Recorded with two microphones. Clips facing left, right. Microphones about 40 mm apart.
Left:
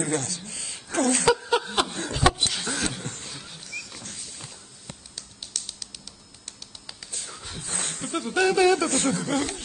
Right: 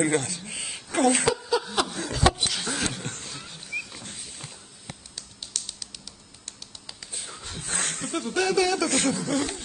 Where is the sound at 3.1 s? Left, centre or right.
Right.